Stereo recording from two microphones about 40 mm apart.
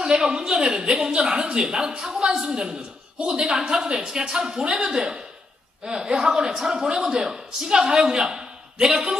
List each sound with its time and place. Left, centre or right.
0.0 s a man's voice: centre